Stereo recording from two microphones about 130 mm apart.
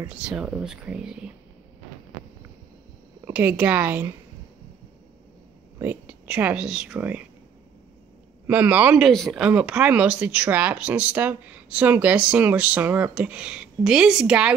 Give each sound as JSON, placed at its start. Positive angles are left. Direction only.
{"t": 0.0, "sound": "speech", "side_deg": -10}
{"t": 3.3, "sound": "speech", "side_deg": -10}
{"t": 5.8, "sound": "a woman's voice", "side_deg": -15}
{"t": 8.5, "sound": "speech", "side_deg": -15}
{"t": 9.0, "sound": "speech", "side_deg": 0}